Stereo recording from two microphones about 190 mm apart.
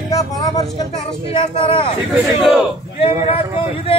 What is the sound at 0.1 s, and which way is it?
Speech, 20° left (ahead or behind).